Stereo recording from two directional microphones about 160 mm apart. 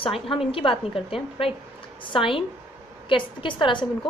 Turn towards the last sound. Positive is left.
turn(degrees=30)  # may be behind; listen again after turning